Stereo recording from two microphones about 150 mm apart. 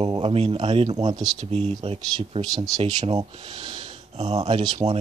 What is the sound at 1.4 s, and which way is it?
Speech, 40° right (ahead or behind).